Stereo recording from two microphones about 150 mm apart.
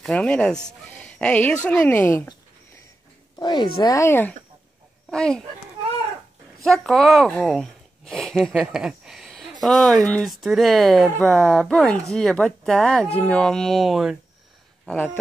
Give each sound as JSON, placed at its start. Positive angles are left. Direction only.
{"t": 0.0, "sound": "speech", "side_deg": 5}
{"t": 3.3, "sound": "speech", "side_deg": 30}
{"t": 6.6, "sound": "speech", "side_deg": 0}